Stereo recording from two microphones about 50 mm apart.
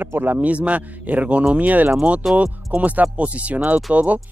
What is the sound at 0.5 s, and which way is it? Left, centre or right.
Speech, right.